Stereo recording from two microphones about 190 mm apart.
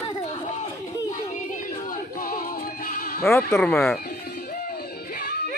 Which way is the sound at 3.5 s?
5° left (ahead or behind).